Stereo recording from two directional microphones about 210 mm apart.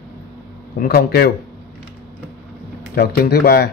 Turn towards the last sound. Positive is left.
turn(degrees=45)  # may be behind; listen again after turning